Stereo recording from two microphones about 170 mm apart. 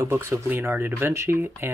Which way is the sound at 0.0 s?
15° right (ahead or behind).